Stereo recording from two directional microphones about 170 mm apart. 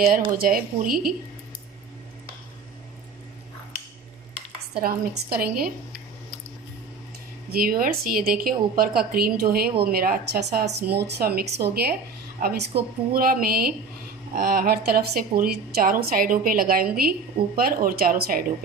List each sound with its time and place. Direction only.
0.0 s a woman's voice: 60° right (ahead or behind)
4.7 s a woman's voice: 65° right (ahead or behind)
7.5 s a woman's voice: 60° right (ahead or behind)